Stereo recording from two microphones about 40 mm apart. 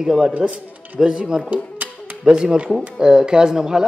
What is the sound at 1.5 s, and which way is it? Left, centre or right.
Music, right.